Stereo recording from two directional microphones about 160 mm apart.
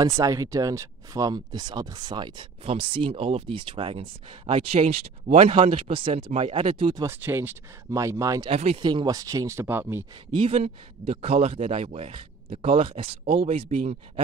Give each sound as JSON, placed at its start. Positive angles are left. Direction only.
{"t": 0.0, "sound": "speech", "side_deg": -20}
{"t": 7.1, "sound": "speech", "side_deg": -15}
{"t": 8.5, "sound": "speech", "side_deg": -35}
{"t": 10.3, "sound": "speech", "side_deg": -35}